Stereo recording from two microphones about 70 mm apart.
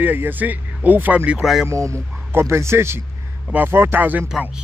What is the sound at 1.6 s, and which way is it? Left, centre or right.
Speech, right.